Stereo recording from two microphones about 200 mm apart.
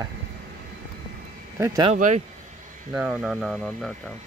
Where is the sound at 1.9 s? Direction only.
35° right (ahead or behind).